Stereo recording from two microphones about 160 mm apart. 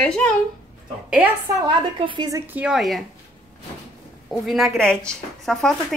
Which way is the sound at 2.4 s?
10° right (ahead or behind).